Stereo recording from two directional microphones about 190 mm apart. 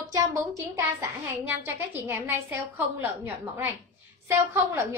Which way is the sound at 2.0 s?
10° right (ahead or behind).